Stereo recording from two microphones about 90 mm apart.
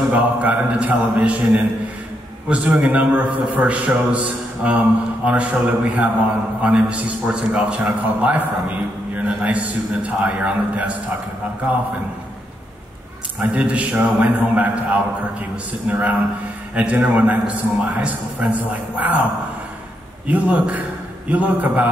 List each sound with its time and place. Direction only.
0.1 s a man's voice: 15° right (ahead or behind)
13.4 s a man's voice: 15° right (ahead or behind)
20.2 s a man's voice: 15° right (ahead or behind)